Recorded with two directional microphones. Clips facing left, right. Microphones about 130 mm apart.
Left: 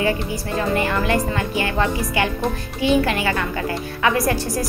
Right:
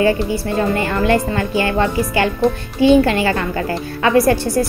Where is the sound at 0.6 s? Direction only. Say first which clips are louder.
Right 2 dB; 30° right (ahead or behind).